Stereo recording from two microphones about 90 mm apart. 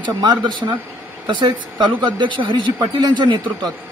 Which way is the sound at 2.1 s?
60° right (ahead or behind).